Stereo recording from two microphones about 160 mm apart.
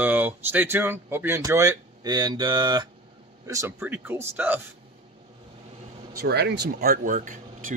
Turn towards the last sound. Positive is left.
turn(degrees=-55)  # may be behind; listen again after turning